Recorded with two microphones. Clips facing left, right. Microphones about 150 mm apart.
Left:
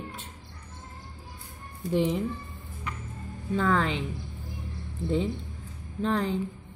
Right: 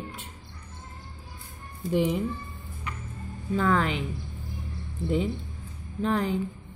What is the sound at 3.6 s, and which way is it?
Speech, 10° right (ahead or behind).